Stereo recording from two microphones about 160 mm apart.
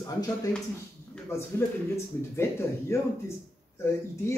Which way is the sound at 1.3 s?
15° left (ahead or behind).